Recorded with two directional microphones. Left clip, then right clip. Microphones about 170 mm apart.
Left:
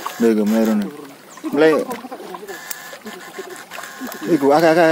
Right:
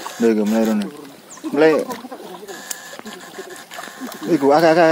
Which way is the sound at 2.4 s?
55° right (ahead or behind).